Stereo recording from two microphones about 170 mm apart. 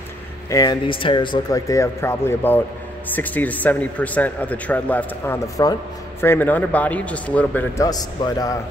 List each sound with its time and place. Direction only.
0.5 s speech: 25° left (ahead or behind)
7.8 s speech: 20° left (ahead or behind)